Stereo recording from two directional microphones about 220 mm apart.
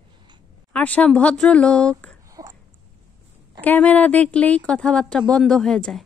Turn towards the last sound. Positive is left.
turn(degrees=5)  # may be behind; listen again after turning